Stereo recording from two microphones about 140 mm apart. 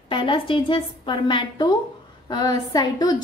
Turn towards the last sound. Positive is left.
turn(degrees=25)  # may be behind; listen again after turning